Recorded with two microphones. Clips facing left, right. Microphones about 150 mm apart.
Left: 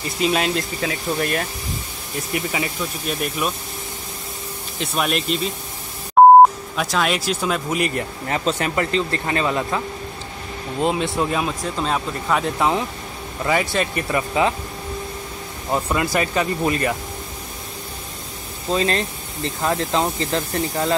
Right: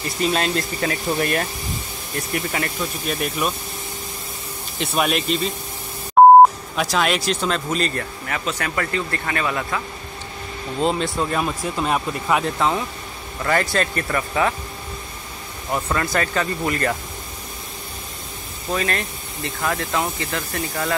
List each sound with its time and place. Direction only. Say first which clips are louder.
0.2 s speech: left 1 dB; 5° left (ahead or behind)
4.7 s speech: right 1 dB; centre (ahead or behind)
6.2 s beep: even; centre (ahead or behind)
6.8 s speech: right 1 dB; centre (ahead or behind); by 9.8 s 20° left (ahead or behind)
10.8 s speech: left 1 dB; 10° left (ahead or behind)
11.6 s speech: right 1 dB; 10° right (ahead or behind)
12.5 s speech: left 1 dB; 15° left (ahead or behind)
15.9 s speech: even; 10° left (ahead or behind)
18.7 s speech: left 3 dB; 25° left (ahead or behind)